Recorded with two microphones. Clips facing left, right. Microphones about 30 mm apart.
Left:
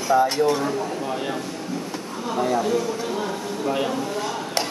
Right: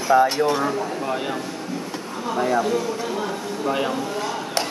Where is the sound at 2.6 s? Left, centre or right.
Centre.